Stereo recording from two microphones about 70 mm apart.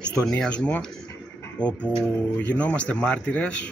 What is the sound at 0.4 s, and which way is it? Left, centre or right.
Speech, centre.